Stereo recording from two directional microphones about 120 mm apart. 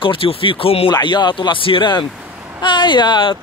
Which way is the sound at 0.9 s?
40° left (ahead or behind).